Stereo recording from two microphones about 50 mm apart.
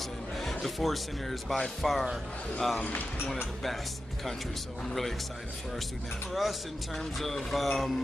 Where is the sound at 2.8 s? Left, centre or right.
Left.